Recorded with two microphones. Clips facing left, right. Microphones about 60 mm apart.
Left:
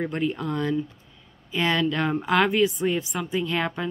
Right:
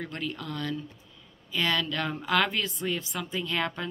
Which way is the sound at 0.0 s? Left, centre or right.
Left.